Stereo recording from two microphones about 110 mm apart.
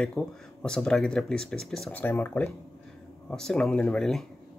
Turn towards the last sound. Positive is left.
turn(degrees=5)  # may be behind; listen again after turning